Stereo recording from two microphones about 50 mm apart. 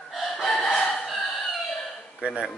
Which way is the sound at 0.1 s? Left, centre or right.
Centre.